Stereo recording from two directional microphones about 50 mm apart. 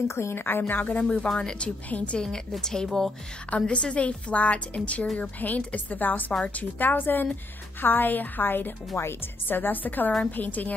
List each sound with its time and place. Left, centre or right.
0.1 s a woman's voice: left
1.0 s speech: centre
1.9 s a woman's voice: left
2.1 s a woman's voice: centre; by 10.7 s left